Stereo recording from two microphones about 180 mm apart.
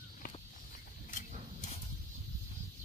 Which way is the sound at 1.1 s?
45° left (ahead or behind).